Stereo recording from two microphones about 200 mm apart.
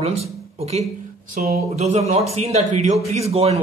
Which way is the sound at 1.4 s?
30° right (ahead or behind).